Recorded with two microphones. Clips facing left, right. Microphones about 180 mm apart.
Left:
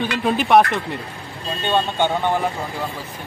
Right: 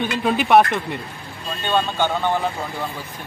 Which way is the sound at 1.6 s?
20° left (ahead or behind).